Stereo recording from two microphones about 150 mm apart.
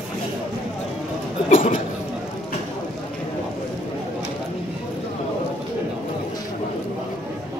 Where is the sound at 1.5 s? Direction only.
40° left (ahead or behind).